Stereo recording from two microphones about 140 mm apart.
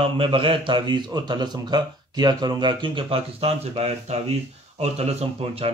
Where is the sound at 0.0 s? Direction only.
40° right (ahead or behind).